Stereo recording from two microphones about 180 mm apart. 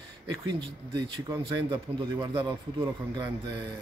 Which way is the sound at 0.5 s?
25° right (ahead or behind).